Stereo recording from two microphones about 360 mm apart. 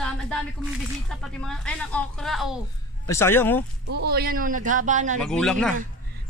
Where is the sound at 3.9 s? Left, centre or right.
Right.